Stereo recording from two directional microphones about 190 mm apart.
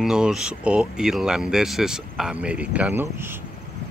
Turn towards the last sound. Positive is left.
turn(degrees=-10)  # may be behind; listen again after turning